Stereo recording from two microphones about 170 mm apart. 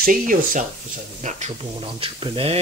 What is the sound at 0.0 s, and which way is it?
Speech, 55° right (ahead or behind).